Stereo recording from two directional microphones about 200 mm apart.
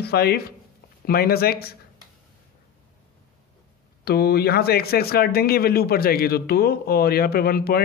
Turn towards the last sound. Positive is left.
turn(degrees=50)  # may be behind; listen again after turning